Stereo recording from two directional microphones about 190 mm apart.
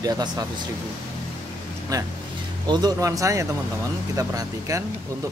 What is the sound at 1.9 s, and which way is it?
Speech, 20° right (ahead or behind).